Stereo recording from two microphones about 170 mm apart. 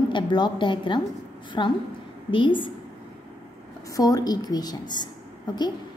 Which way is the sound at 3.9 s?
20° left (ahead or behind).